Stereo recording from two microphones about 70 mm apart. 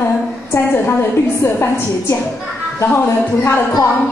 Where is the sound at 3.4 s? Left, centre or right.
Left.